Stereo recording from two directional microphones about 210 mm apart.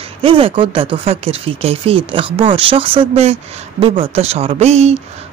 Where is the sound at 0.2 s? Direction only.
25° right (ahead or behind).